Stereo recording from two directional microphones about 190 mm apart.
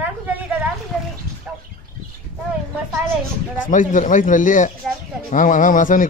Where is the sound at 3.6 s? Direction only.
45° left (ahead or behind).